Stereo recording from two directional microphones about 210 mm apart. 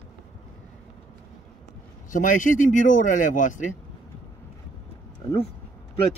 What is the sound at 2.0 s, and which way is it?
A man's voice, 40° left (ahead or behind).